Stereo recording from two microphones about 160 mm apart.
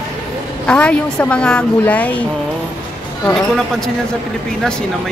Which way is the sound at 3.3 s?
5° left (ahead or behind).